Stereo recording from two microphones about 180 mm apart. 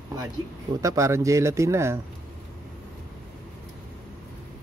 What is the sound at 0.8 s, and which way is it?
Speech, 15° right (ahead or behind).